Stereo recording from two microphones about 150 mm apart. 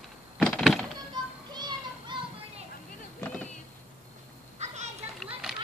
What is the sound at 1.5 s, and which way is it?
Music, 30° right (ahead or behind).